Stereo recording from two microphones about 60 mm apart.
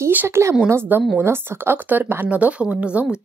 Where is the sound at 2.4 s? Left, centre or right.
Right.